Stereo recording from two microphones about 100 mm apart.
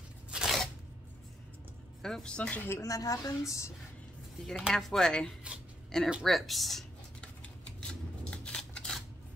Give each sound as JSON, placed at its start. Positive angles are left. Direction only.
{"t": 0.3, "sound": "a sound", "side_deg": -10}
{"t": 2.0, "sound": "speech", "side_deg": 5}
{"t": 2.8, "sound": "a woman's voice", "side_deg": 35}
{"t": 4.5, "sound": "speech", "side_deg": 5}
{"t": 7.8, "sound": "scissors", "side_deg": 10}